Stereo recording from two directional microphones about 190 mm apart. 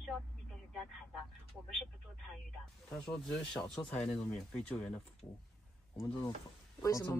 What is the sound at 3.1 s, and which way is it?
Speech, 5° left (ahead or behind).